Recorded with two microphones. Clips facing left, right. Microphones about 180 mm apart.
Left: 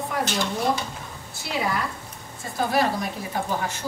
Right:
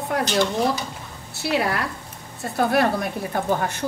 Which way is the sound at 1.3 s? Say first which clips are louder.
Right 4 dB; 70° right (ahead or behind).